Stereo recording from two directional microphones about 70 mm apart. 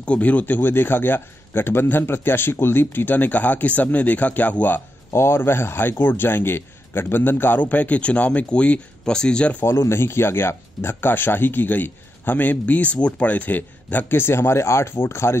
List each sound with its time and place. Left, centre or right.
0.0 s speech: centre
5.1 s speech: left; by 9.6 s centre
9.7 s speech: left